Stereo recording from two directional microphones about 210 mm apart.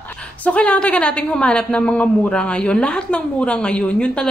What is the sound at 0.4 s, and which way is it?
A woman's voice, 5° left (ahead or behind).